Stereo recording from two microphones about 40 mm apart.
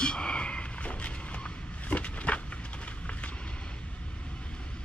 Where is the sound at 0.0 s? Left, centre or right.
Left.